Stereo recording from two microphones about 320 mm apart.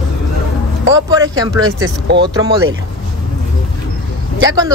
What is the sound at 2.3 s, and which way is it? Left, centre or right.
Speech, centre.